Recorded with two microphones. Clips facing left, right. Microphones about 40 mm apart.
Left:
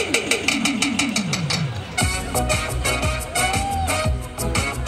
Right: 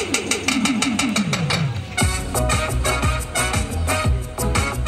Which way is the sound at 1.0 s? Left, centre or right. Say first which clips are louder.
Right 2 dB; right.